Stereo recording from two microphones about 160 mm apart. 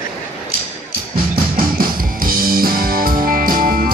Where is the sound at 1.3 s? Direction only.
60° right (ahead or behind).